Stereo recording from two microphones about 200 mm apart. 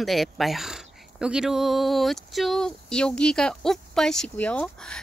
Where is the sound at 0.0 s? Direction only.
Centre (ahead or behind).